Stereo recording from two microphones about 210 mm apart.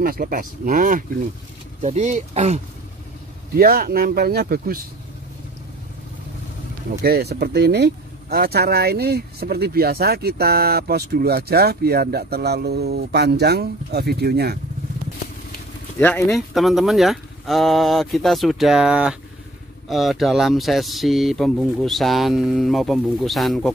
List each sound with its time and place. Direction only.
0.0 s speech: 45° right (ahead or behind)
3.5 s speech: 45° right (ahead or behind)
7.0 s speech: 50° right (ahead or behind)
16.0 s speech: 5° left (ahead or behind)